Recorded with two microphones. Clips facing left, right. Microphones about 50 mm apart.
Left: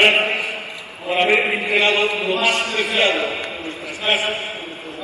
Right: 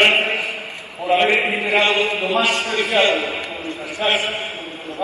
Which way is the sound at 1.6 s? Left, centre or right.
Right.